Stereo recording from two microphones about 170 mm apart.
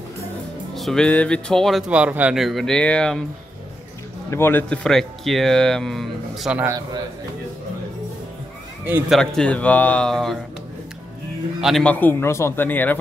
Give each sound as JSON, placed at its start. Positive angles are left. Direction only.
{"t": 0.7, "sound": "speech", "side_deg": 0}
{"t": 4.3, "sound": "speech", "side_deg": 15}
{"t": 6.6, "sound": "a man's voice", "side_deg": -20}
{"t": 9.1, "sound": "speech", "side_deg": 5}
{"t": 11.6, "sound": "a man's voice", "side_deg": 5}